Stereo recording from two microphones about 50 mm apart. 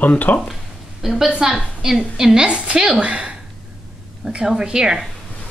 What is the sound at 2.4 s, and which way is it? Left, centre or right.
A woman's voice, right.